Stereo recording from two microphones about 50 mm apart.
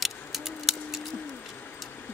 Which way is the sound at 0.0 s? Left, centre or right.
Centre.